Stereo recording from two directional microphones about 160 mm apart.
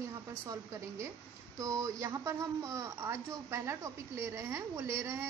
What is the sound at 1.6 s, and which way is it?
Speech, 20° right (ahead or behind).